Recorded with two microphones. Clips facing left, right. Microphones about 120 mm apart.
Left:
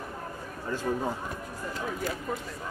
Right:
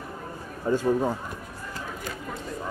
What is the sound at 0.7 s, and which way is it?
Speech, 15° right (ahead or behind).